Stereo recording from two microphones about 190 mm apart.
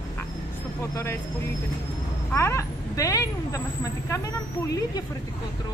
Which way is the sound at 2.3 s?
15° left (ahead or behind).